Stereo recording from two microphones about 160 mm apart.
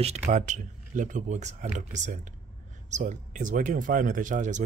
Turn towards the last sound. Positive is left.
turn(degrees=-50)  # may be behind; listen again after turning